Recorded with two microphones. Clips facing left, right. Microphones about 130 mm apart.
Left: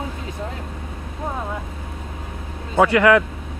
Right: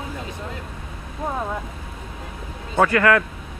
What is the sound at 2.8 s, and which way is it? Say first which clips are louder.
Speech: left 4 dB; 15° left (ahead or behind).